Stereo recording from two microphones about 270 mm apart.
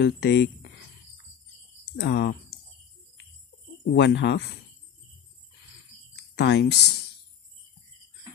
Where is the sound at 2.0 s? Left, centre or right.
Left.